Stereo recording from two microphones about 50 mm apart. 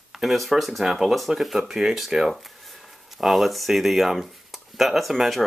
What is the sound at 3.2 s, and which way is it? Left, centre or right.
Speech, centre.